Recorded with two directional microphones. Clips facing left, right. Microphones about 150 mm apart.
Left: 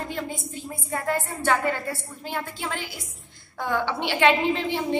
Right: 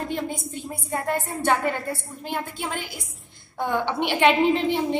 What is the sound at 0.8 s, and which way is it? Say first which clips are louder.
A woman's voice: even; 20° right (ahead or behind).